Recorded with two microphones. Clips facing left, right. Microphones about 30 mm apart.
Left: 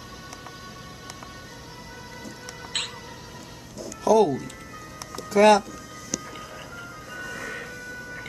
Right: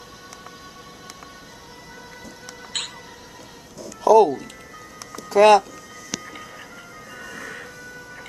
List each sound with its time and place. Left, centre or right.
2.7 s music: centre
4.0 s speech: centre
7.1 s music: centre